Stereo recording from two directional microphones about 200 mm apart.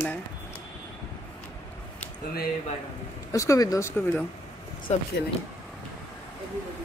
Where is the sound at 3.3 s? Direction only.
15° left (ahead or behind).